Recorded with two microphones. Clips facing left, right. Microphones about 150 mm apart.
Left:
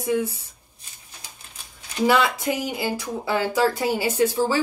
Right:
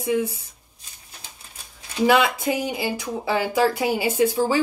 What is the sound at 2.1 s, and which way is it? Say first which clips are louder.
Speech: right 2 dB; 15° right (ahead or behind).